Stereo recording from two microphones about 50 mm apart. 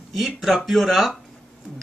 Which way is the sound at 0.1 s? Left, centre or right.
Centre.